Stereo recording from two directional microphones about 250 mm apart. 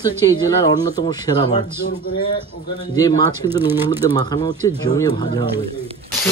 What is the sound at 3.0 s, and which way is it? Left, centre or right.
Speech, centre.